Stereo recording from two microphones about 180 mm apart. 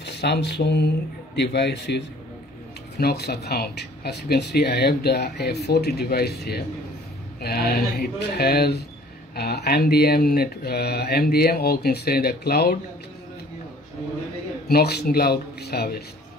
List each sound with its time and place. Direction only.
0.0 s speech: 70° left (ahead or behind)
14.7 s speech: 65° left (ahead or behind)